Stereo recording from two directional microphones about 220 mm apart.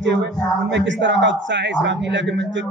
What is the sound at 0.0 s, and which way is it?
A man's voice, 55° right (ahead or behind).